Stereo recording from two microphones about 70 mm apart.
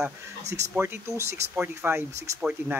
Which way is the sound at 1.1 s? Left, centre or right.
Right.